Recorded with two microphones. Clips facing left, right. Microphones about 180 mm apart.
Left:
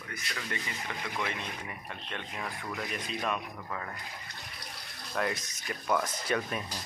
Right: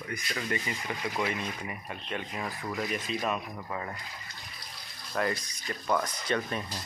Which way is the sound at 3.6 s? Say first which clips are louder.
Right 3 dB; 15° right (ahead or behind).